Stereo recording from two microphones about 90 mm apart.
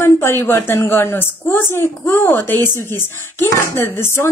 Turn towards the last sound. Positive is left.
turn(degrees=25)  # may be behind; listen again after turning